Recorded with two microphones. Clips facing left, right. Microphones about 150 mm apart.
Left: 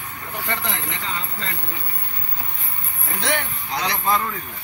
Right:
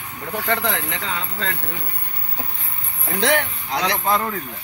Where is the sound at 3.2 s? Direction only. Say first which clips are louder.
Right 5 dB; 90° right.